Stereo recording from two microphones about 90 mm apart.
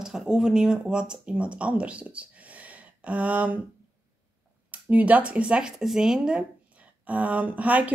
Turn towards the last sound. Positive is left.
turn(degrees=-15)  # may be behind; listen again after turning